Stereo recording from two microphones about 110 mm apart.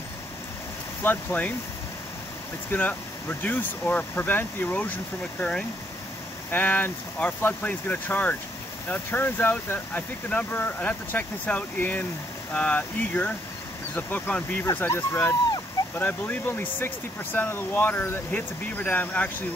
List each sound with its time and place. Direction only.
1.0 s speech: 15° left (ahead or behind)
2.7 s speech: 15° left (ahead or behind)